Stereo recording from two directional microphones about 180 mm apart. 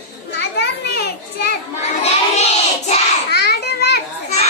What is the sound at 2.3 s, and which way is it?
Child singing, 40° left (ahead or behind).